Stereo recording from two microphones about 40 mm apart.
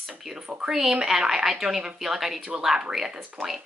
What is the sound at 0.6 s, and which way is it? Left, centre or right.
Speech, centre.